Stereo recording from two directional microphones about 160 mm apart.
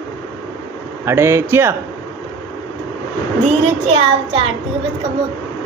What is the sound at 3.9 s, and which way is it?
Child singing, 35° right (ahead or behind).